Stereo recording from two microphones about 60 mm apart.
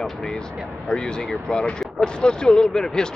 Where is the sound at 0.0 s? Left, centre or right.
Centre.